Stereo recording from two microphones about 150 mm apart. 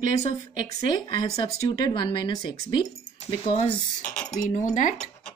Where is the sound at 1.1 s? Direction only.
30° left (ahead or behind).